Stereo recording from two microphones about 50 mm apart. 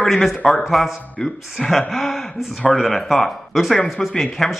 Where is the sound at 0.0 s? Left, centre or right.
Centre.